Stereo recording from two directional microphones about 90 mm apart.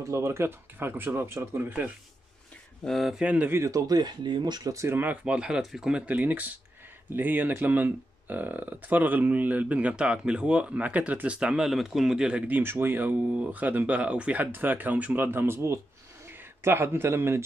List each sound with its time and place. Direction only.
0.0 s speech: 35° right (ahead or behind)
2.8 s speech: centre (ahead or behind)
3.3 s speech: 20° right (ahead or behind); by 4.7 s 50° right (ahead or behind)
4.7 s speech: 25° right (ahead or behind)
5.2 s a man's voice: 10° right (ahead or behind); by 17.4 s 25° right (ahead or behind)